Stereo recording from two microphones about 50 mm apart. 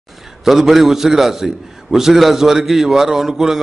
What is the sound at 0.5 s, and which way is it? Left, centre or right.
A man's voice, centre.